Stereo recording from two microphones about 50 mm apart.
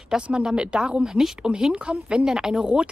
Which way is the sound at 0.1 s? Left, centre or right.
Centre.